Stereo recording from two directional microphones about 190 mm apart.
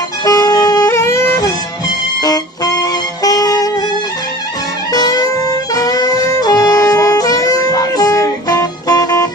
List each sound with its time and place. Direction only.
0.2 s music: 20° left (ahead or behind)
4.9 s music: 20° left (ahead or behind)